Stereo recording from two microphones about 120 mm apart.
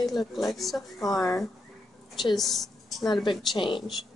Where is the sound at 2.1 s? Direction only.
Centre (ahead or behind).